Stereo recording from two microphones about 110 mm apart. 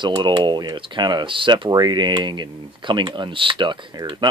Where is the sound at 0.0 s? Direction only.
45° right (ahead or behind).